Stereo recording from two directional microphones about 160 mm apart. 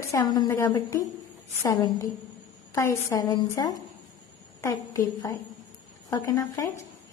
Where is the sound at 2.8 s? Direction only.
15° left (ahead or behind).